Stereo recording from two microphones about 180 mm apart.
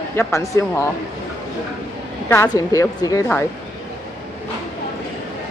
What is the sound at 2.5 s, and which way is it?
Speech, 20° left (ahead or behind).